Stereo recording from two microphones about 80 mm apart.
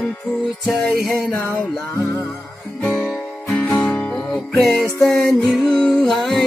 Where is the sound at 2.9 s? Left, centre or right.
Centre.